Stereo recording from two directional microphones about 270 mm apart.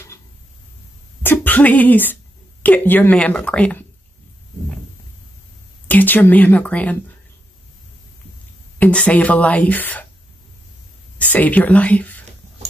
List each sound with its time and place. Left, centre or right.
1.2 s a sound: centre
2.6 s speech: centre
5.9 s speech: centre
8.7 s speech: centre
11.1 s speech: centre